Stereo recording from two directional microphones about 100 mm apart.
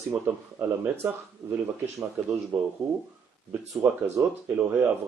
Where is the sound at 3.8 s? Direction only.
15° right (ahead or behind).